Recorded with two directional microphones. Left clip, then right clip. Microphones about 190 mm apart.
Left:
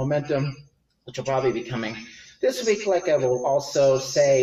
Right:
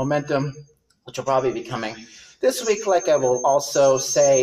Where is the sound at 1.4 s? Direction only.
10° left (ahead or behind).